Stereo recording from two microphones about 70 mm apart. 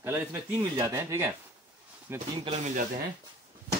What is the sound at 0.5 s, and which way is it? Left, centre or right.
Speech, right.